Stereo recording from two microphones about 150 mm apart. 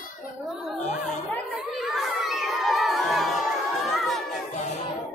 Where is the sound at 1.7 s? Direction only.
Centre (ahead or behind).